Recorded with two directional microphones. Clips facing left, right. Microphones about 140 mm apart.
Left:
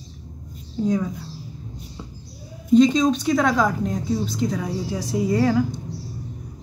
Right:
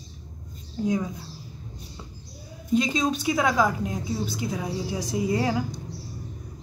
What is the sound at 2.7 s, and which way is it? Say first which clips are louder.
A woman's voice: left 8 dB; 5° right (ahead or behind).